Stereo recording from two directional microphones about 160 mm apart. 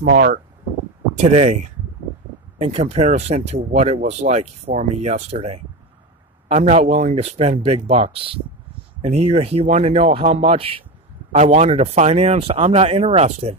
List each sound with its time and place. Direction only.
0.0 s speech: 65° right (ahead or behind)
1.1 s speech: 45° right (ahead or behind)